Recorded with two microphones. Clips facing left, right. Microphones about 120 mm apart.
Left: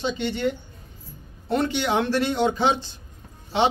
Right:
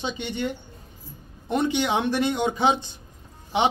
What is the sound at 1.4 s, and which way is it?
Speech, 15° right (ahead or behind).